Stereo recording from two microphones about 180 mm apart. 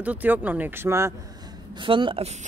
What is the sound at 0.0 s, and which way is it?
A man's voice, 10° right (ahead or behind).